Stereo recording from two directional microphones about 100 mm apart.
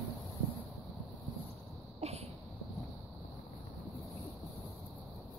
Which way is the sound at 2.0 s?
90° right.